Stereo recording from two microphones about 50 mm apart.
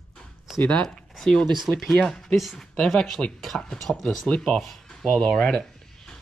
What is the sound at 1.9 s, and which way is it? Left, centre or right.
Speech, centre.